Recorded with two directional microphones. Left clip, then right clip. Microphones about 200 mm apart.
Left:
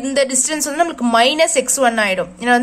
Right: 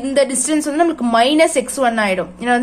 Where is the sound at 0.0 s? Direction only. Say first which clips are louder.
Right 1 dB; 5° left (ahead or behind).